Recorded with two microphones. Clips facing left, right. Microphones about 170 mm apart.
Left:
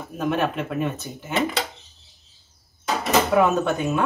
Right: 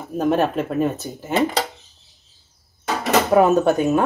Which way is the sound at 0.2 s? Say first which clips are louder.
Right 5 dB; 35° right (ahead or behind).